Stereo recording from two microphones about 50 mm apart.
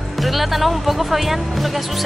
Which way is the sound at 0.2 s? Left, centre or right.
Centre.